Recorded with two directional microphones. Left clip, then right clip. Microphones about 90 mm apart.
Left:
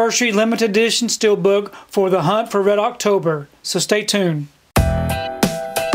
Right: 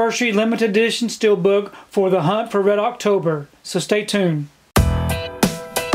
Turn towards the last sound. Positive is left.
turn(degrees=0)  # may be behind; listen again after turning